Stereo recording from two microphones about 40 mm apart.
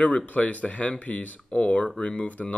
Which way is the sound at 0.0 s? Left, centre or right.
Left.